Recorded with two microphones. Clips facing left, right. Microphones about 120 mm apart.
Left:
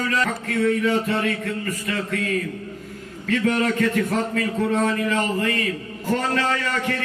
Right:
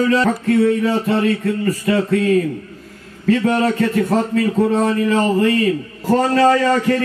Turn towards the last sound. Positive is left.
turn(degrees=-35)  # may be behind; listen again after turning